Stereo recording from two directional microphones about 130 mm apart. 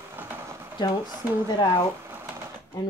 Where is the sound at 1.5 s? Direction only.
30° left (ahead or behind).